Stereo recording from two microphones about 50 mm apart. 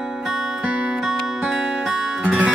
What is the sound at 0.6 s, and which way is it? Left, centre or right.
Music, right.